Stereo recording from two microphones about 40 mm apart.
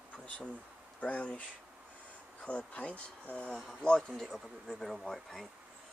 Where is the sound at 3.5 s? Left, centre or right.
Centre.